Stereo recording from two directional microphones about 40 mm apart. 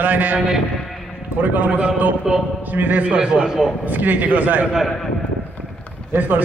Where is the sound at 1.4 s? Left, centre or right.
Right.